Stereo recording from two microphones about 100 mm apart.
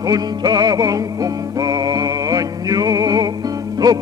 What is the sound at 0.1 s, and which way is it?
Music, 40° right (ahead or behind).